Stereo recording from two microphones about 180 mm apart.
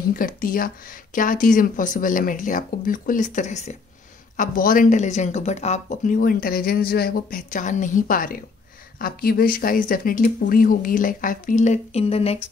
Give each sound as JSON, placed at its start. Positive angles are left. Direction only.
{"t": 0.1, "sound": "speech", "side_deg": 50}